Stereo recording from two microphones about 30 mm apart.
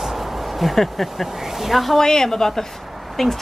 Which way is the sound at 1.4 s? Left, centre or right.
Centre.